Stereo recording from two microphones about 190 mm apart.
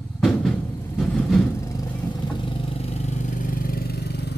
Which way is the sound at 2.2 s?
25° left (ahead or behind).